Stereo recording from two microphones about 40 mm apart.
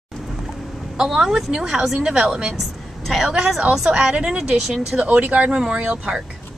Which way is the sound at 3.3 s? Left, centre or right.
Right.